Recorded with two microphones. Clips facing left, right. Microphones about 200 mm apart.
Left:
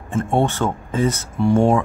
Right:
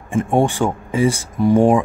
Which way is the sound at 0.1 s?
15° right (ahead or behind).